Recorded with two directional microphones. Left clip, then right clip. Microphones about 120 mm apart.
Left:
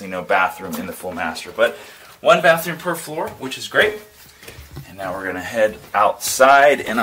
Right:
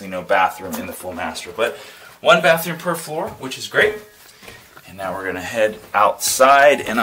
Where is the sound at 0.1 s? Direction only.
30° left (ahead or behind).